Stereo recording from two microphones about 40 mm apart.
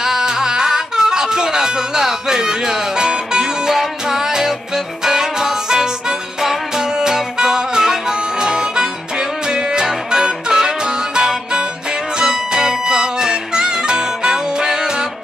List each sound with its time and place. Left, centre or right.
0.0 s music: centre